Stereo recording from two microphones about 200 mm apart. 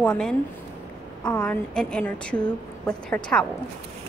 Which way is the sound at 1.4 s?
5° left (ahead or behind).